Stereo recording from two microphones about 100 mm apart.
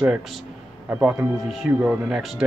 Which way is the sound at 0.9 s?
15° right (ahead or behind).